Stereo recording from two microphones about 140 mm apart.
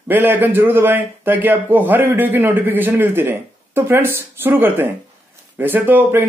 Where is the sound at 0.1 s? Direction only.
15° right (ahead or behind).